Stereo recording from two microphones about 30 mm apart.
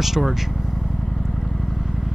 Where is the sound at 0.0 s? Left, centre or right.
Centre.